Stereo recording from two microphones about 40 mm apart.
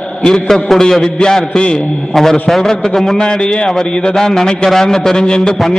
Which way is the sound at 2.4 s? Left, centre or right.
Centre.